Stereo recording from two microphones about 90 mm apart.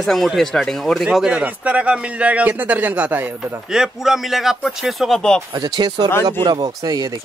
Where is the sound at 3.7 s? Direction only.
5° right (ahead or behind).